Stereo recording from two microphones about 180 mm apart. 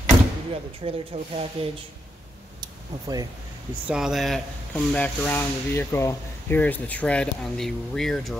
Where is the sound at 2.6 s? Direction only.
20° right (ahead or behind).